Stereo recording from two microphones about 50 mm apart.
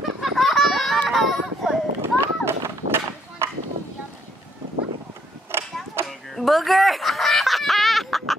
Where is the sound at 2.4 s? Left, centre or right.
Right.